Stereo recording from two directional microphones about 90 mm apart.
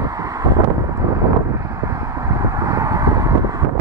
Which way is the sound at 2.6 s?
35° right (ahead or behind).